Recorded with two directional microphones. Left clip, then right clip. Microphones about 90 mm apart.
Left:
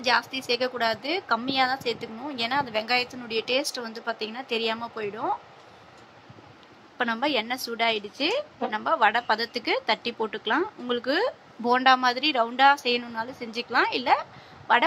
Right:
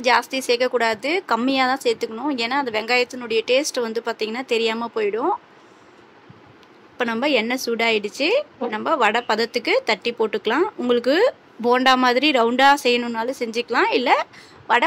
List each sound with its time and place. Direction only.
0.0 s a woman's voice: 35° right (ahead or behind)
7.0 s a woman's voice: 25° right (ahead or behind)